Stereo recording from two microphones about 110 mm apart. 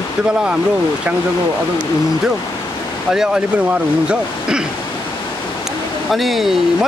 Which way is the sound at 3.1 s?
5° right (ahead or behind).